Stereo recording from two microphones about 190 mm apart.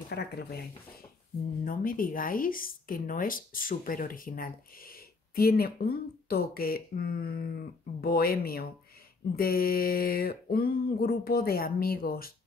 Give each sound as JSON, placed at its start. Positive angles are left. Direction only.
{"t": 0.1, "sound": "speech", "side_deg": 60}